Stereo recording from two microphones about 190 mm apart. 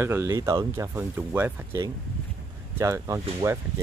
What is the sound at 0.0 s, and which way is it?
Speech, 15° right (ahead or behind).